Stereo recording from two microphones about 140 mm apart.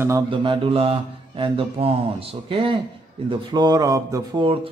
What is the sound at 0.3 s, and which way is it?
Speech, 35° right (ahead or behind).